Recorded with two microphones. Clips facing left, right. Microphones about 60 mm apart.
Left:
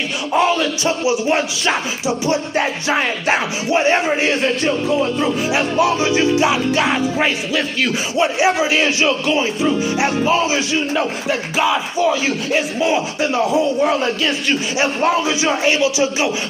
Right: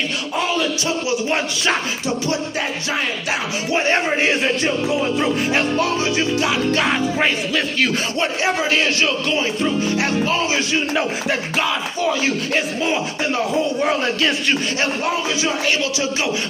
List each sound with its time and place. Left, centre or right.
0.3 s music: left
1.3 s music: centre
2.2 s music: left
3.9 s speech: centre
5.9 s music: centre
6.7 s music: centre
10.7 s speech: centre
14.8 s music: left